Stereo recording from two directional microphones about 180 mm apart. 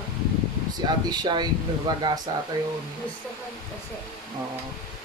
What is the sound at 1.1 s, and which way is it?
Speech, 25° right (ahead or behind).